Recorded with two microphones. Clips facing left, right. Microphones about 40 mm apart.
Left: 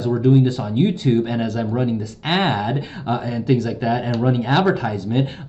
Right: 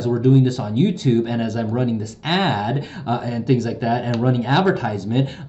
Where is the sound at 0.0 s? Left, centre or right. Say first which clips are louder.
Even; centre.